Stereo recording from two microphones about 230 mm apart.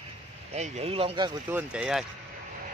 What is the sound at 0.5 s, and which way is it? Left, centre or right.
Speech, right.